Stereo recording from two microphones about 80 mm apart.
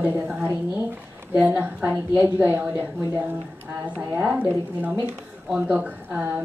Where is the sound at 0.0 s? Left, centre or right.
Right.